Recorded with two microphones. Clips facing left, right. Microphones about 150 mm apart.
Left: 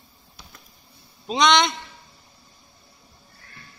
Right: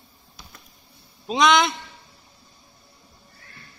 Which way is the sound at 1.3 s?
5° right (ahead or behind).